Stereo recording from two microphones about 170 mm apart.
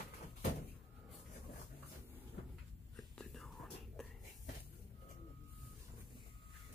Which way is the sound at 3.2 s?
Centre (ahead or behind).